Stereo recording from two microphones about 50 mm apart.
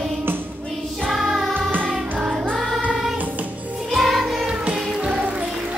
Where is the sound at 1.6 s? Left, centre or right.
Right.